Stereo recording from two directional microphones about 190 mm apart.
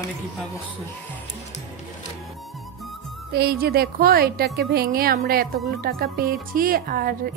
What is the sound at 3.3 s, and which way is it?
Speech, 55° right (ahead or behind).